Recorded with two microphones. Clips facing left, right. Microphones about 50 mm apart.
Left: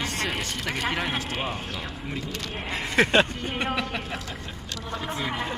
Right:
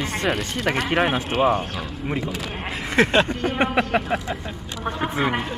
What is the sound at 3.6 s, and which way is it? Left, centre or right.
Speech, right.